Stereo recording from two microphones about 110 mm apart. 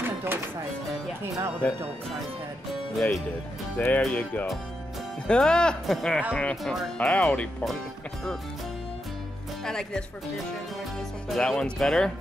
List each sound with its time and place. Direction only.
0.0 s music: 20° right (ahead or behind)
1.6 s speech: 15° left (ahead or behind)
2.7 s speech: centre (ahead or behind)
3.7 s speech: 15° left (ahead or behind)
5.2 s speech: 10° left (ahead or behind)
9.7 s speech: 5° left (ahead or behind)
11.2 s speech: 5° left (ahead or behind)